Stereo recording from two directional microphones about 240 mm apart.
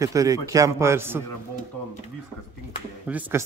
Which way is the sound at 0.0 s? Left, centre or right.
Centre.